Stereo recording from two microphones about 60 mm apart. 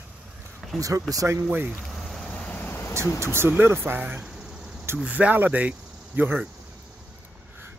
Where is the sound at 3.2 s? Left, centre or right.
Right.